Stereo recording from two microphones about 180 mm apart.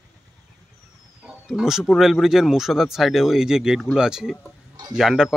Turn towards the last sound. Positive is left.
turn(degrees=-5)  # may be behind; listen again after turning